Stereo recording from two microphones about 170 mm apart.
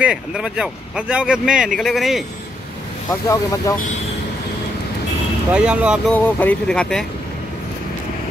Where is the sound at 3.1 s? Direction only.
20° left (ahead or behind).